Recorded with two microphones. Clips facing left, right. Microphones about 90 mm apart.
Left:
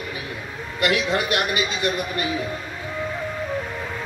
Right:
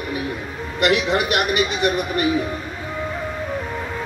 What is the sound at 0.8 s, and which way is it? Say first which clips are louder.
A man's voice: right 3 dB; 65° right (ahead or behind).